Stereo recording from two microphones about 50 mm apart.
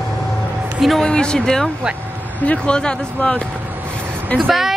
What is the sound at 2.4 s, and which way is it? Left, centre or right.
Speech, left.